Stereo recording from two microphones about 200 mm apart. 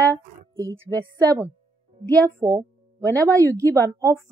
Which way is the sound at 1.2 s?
15° right (ahead or behind).